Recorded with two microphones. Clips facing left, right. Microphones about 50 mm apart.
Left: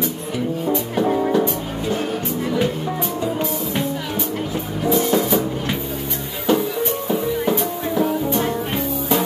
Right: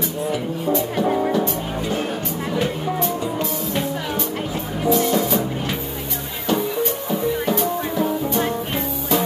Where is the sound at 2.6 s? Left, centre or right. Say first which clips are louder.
Right 2 dB; centre.